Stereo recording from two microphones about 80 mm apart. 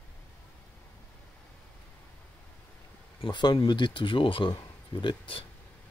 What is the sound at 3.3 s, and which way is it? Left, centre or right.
Speech, left.